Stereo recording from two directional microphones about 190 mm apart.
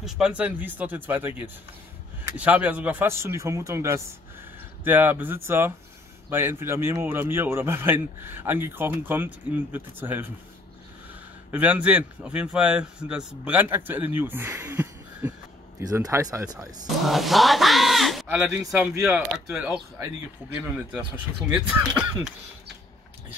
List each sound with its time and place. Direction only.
0.0 s a man's voice: 5° right (ahead or behind)
11.5 s a man's voice: 10° right (ahead or behind)
16.5 s speech: centre (ahead or behind)